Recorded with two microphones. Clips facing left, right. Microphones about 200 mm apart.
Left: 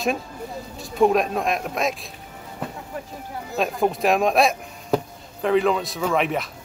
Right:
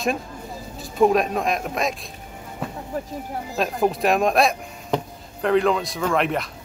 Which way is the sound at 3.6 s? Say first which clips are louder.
Even; centre (ahead or behind).